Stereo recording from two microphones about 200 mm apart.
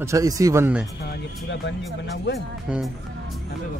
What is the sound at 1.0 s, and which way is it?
Speech, 55° left (ahead or behind).